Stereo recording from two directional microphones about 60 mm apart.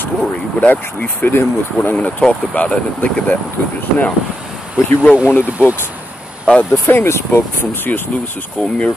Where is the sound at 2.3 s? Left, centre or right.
Left.